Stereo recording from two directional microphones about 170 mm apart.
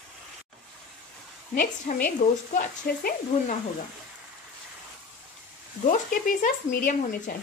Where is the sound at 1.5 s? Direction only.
55° left (ahead or behind).